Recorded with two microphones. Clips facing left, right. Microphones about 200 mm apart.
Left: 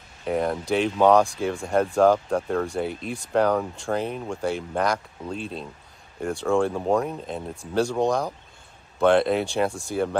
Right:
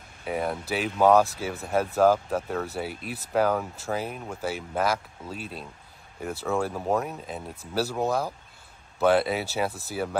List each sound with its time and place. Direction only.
0.2 s speech: 5° right (ahead or behind)